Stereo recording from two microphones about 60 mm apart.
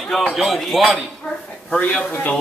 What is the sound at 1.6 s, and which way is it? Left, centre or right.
Speech, centre.